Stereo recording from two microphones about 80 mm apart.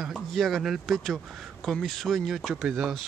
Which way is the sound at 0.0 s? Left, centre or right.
Centre.